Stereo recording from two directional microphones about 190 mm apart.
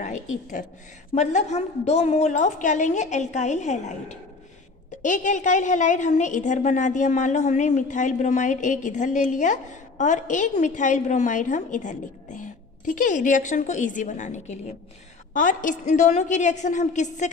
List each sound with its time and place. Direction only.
0.0 s a woman's voice: 40° left (ahead or behind)